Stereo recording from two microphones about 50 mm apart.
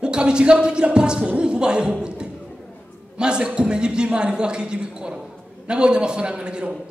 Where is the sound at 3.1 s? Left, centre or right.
Centre.